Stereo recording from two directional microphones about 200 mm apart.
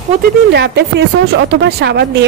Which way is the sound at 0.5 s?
55° right (ahead or behind).